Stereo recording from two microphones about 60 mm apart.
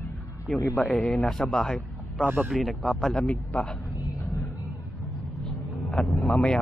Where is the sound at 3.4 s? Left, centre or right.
Left.